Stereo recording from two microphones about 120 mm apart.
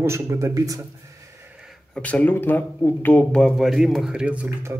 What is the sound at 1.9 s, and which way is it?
Speech, 10° left (ahead or behind).